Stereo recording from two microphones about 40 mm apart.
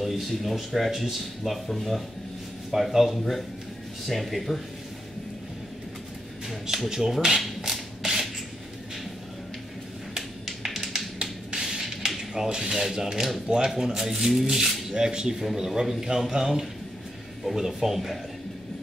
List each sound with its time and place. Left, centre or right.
0.0 s speech: centre
6.7 s rub: centre
10.1 s tap: centre
11.1 s finger snapping: centre
12.2 s speech: centre